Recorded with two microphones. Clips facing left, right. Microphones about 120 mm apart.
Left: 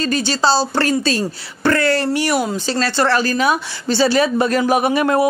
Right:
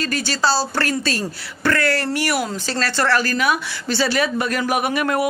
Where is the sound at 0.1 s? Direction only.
25° left (ahead or behind).